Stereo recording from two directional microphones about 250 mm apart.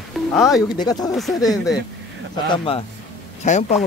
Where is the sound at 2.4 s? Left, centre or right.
Left.